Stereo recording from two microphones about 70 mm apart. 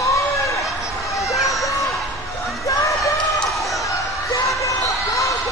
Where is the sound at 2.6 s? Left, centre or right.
Left.